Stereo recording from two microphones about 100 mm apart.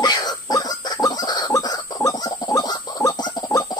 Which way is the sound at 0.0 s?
40° left (ahead or behind).